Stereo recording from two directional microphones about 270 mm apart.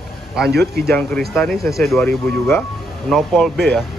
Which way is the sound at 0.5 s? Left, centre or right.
Right.